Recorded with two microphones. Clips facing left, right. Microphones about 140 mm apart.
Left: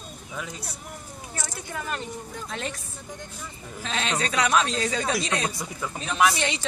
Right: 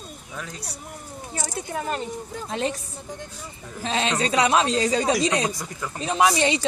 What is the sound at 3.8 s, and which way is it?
Speech, 30° right (ahead or behind).